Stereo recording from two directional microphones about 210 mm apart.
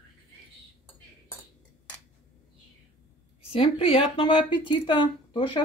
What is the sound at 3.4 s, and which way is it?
A woman's voice, 25° left (ahead or behind).